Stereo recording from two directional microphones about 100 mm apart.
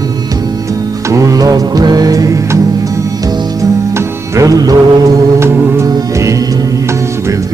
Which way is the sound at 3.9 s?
35° right (ahead or behind).